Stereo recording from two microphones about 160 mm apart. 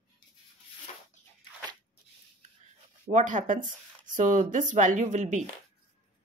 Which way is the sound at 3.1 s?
50° right (ahead or behind).